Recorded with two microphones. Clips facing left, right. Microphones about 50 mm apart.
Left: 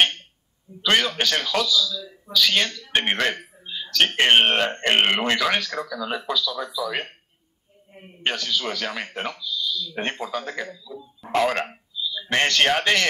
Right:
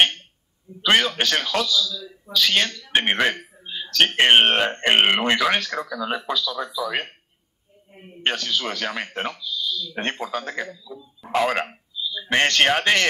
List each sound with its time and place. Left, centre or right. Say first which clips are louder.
0.8 s speech: right 2 dB; centre
8.3 s a man's voice: right 1 dB; centre